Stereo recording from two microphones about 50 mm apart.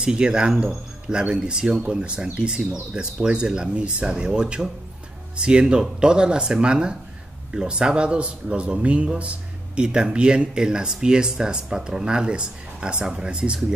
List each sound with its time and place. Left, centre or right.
0.0 s speech: centre